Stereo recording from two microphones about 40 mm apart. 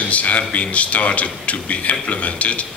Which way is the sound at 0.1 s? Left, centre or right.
Left.